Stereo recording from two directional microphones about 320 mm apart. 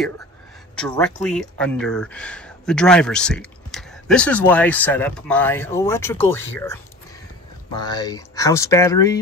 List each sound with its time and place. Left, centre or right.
0.7 s speech: centre